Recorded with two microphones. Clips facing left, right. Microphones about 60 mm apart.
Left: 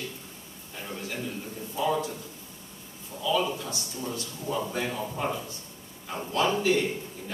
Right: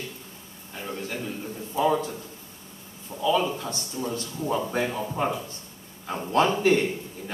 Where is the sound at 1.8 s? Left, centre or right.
Right.